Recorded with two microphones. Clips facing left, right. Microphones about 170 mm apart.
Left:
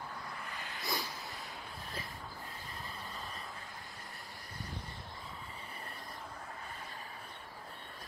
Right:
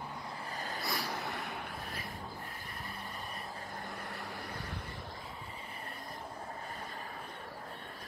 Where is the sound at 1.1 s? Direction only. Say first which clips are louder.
Right 7 dB; 75° right (ahead or behind).